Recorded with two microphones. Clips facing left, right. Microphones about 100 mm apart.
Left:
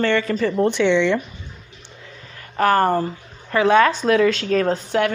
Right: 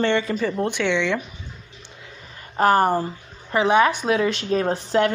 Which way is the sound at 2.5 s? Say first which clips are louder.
Left 1 dB; 20° right (ahead or behind).